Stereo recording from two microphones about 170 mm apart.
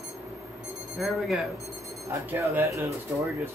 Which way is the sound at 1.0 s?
Centre (ahead or behind).